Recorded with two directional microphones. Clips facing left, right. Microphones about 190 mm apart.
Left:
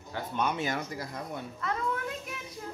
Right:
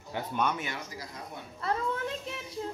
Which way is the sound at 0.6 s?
40° left (ahead or behind).